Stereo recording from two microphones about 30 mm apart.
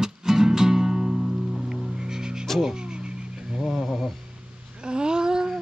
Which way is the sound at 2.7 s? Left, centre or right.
Right.